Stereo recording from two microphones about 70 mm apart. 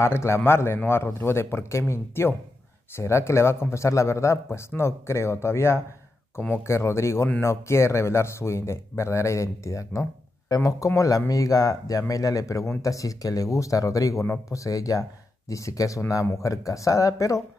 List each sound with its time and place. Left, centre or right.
0.0 s speech: left